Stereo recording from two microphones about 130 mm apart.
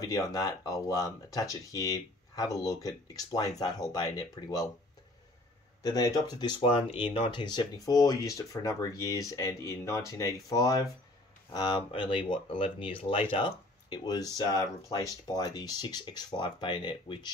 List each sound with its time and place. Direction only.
0.0 s speech: 25° left (ahead or behind)
5.8 s speech: 30° left (ahead or behind)